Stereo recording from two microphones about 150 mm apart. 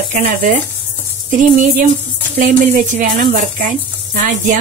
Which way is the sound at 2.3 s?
65° right (ahead or behind).